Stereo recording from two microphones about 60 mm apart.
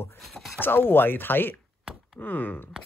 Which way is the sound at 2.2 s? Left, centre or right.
Left.